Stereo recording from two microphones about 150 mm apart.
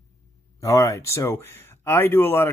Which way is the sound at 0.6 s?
20° left (ahead or behind).